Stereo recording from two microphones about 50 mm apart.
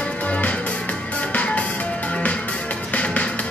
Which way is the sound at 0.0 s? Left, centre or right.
Left.